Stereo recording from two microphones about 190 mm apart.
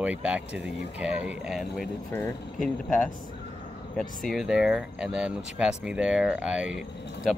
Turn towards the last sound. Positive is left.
turn(degrees=-5)  # may be behind; listen again after turning